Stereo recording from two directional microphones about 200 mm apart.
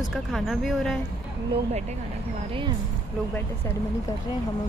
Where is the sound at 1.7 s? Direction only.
35° right (ahead or behind).